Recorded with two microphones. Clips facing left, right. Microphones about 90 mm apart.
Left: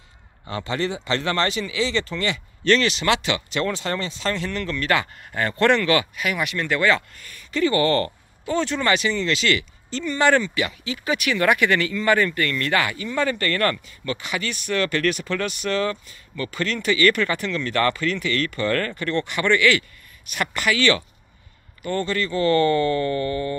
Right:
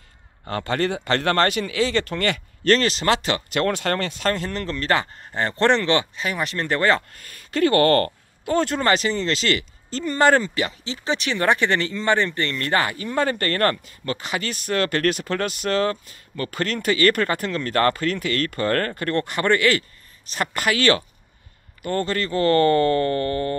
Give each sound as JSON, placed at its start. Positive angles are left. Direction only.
{"t": 0.5, "sound": "speech", "side_deg": -50}